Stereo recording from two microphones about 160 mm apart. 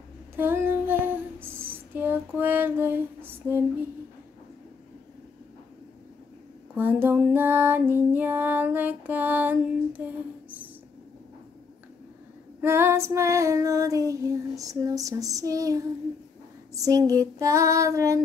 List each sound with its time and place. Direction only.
0.4 s female singing: 15° right (ahead or behind)
6.8 s female singing: 15° right (ahead or behind)
12.6 s female singing: 15° right (ahead or behind)